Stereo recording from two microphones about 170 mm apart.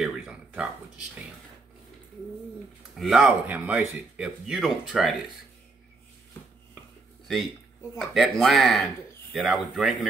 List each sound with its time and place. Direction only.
0.0 s a sound: 5° right (ahead or behind)
2.9 s speech: centre (ahead or behind)
8.0 s speech: centre (ahead or behind)